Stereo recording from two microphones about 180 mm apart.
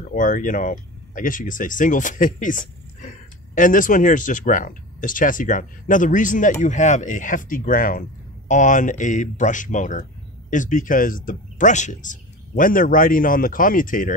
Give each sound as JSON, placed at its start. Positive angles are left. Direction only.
{"t": 0.1, "sound": "speech", "side_deg": 45}